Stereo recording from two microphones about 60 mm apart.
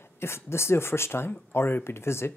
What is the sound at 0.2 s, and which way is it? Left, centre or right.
Speech, left.